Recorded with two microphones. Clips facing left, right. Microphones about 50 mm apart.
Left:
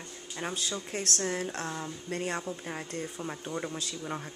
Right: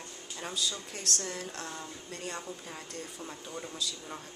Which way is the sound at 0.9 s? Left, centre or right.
Left.